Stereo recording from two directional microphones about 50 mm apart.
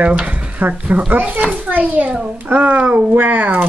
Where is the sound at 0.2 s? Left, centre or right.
Right.